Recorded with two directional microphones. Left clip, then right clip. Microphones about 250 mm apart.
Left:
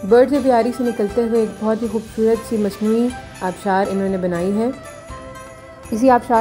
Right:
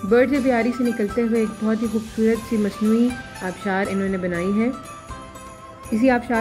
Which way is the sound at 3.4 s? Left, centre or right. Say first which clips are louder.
Left 6 dB; left.